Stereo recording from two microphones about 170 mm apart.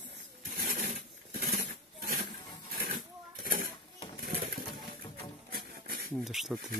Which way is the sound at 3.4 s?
55° right (ahead or behind).